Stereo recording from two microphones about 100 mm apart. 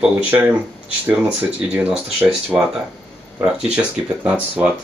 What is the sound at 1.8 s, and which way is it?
Speech, 15° right (ahead or behind).